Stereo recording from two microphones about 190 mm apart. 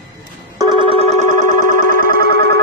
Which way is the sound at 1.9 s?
50° right (ahead or behind).